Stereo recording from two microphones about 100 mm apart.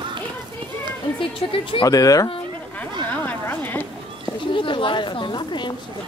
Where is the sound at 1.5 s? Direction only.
60° left (ahead or behind).